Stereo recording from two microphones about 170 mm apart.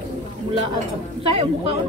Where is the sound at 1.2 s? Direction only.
35° right (ahead or behind).